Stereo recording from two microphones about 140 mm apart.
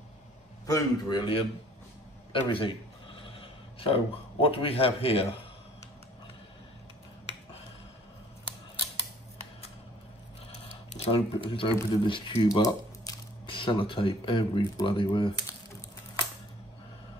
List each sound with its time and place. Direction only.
0.7 s a man's voice: 30° left (ahead or behind)
2.3 s a man's voice: 35° left (ahead or behind)
11.1 s speech: 40° left (ahead or behind)